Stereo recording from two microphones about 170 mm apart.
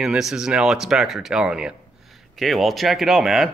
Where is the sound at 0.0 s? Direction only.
Centre (ahead or behind).